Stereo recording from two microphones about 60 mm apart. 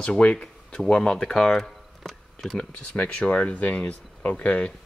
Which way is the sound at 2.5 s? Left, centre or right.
Centre.